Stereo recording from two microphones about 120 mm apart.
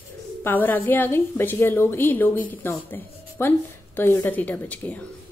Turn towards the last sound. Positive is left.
turn(degrees=15)  # may be behind; listen again after turning